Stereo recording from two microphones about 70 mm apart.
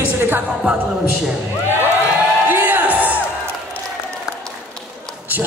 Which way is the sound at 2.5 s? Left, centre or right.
Right.